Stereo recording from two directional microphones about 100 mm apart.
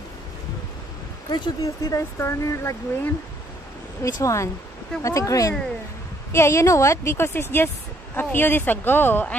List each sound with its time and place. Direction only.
1.3 s speech: 40° left (ahead or behind)
4.0 s a woman's voice: 30° left (ahead or behind)